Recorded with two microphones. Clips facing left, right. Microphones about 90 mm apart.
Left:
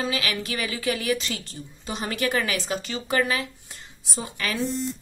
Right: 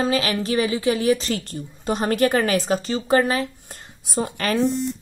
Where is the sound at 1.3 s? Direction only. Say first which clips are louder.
Right 8 dB; 45° right (ahead or behind).